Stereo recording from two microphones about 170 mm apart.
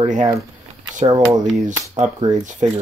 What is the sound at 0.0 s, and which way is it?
Speech, 45° right (ahead or behind).